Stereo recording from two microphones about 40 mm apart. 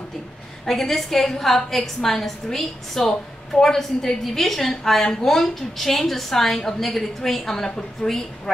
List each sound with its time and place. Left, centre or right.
0.7 s a woman's voice: centre